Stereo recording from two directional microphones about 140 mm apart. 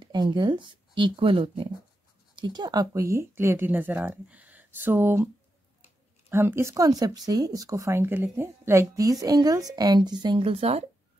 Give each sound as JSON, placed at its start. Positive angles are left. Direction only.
{"t": 0.0, "sound": "speech", "side_deg": -30}
{"t": 6.3, "sound": "speech", "side_deg": -20}